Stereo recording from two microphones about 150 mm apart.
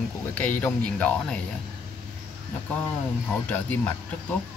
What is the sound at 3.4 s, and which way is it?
Speech, 10° left (ahead or behind).